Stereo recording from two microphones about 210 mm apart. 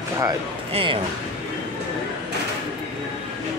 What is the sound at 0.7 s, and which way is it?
Speech, 25° right (ahead or behind).